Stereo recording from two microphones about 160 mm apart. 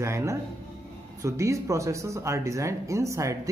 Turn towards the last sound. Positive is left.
turn(degrees=-20)  # may be behind; listen again after turning